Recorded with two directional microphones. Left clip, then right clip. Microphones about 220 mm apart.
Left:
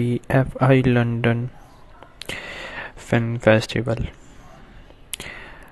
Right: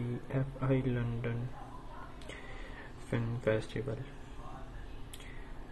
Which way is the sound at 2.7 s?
50° left (ahead or behind).